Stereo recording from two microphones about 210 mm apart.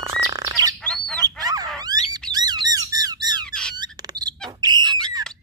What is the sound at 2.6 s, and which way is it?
Squawk, 15° right (ahead or behind).